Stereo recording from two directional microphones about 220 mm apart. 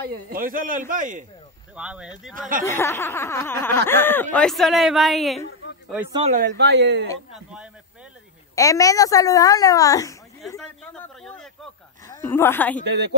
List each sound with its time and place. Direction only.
0.1 s speech: 40° right (ahead or behind)
1.8 s speech: 5° right (ahead or behind)
2.6 s speech: 10° left (ahead or behind)
6.5 s speech: 50° right (ahead or behind)
8.5 s speech: 15° left (ahead or behind)
10.6 s speech: 5° left (ahead or behind)
12.8 s speech: 50° right (ahead or behind)